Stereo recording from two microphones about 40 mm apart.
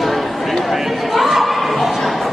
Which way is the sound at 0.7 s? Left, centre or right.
Centre.